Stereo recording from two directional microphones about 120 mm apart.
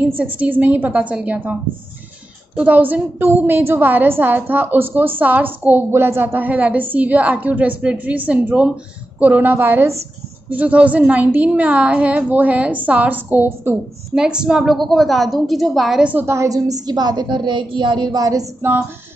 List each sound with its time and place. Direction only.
0.4 s a woman's voice: 15° right (ahead or behind)
16.1 s a woman's voice: 20° right (ahead or behind)